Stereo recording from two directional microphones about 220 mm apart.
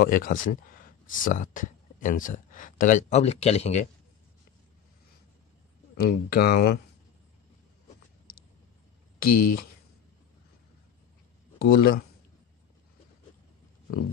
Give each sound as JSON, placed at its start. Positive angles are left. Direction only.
{"t": 0.0, "sound": "speech", "side_deg": 40}
{"t": 5.9, "sound": "speech", "side_deg": 45}
{"t": 9.2, "sound": "speech", "side_deg": 40}
{"t": 11.5, "sound": "speech", "side_deg": 45}